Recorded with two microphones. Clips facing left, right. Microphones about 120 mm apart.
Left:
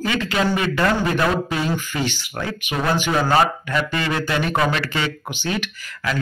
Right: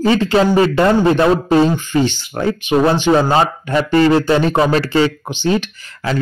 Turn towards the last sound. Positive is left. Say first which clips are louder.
# right 4 dB
turn(degrees=-30)  # may be behind; listen again after turning